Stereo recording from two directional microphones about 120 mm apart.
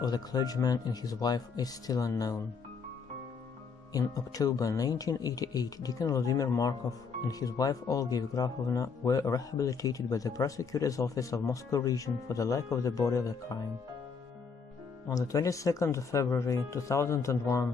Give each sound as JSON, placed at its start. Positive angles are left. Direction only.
{"t": 0.0, "sound": "speech", "side_deg": 35}
{"t": 3.9, "sound": "speech", "side_deg": 30}
{"t": 15.0, "sound": "speech", "side_deg": 30}